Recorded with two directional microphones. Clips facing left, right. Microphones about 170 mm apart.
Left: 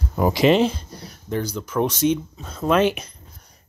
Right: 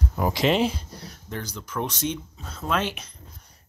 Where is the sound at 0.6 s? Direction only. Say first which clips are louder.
Left 4 dB; 5° right (ahead or behind); by 3.0 s 15° left (ahead or behind).